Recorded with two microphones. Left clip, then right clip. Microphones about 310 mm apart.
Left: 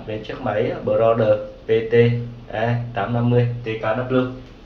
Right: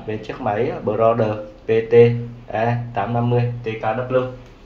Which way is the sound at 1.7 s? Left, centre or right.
Right.